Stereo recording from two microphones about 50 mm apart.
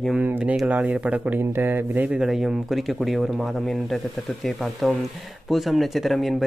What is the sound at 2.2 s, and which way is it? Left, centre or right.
Speech, centre.